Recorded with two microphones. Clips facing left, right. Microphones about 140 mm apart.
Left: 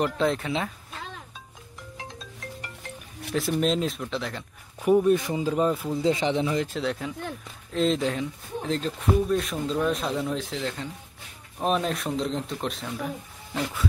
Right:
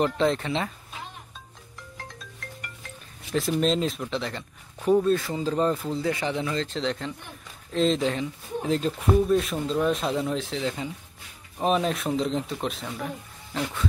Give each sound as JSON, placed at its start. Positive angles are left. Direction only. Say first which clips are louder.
{"t": 0.0, "sound": "speech", "louder": "right 1 dB", "side_deg": 0}
{"t": 2.0, "sound": "marimba", "louder": "left 2 dB", "side_deg": 20}
{"t": 3.3, "sound": "speech", "louder": "right 1 dB", "side_deg": 0}
{"t": 4.8, "sound": "speech", "louder": "left 1 dB", "side_deg": 15}
{"t": 6.0, "sound": "speech", "louder": "left 5 dB", "side_deg": 20}